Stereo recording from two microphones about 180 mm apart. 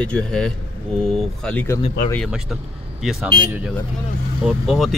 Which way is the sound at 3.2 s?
25° right (ahead or behind).